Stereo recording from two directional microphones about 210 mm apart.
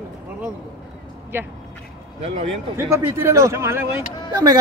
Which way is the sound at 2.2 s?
30° right (ahead or behind).